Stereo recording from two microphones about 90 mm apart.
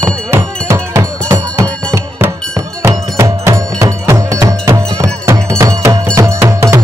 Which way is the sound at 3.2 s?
35° right (ahead or behind).